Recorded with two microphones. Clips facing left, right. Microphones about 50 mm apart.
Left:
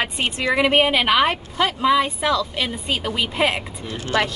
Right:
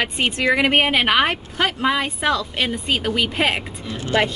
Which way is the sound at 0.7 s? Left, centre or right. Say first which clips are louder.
Even; right.